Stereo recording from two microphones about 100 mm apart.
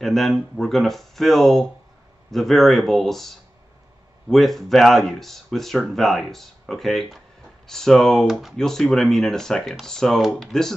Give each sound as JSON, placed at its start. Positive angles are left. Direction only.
{"t": 0.0, "sound": "speech", "side_deg": 0}